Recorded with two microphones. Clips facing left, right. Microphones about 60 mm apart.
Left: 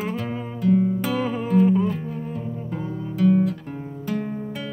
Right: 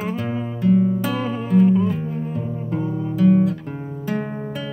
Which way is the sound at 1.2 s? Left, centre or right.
Centre.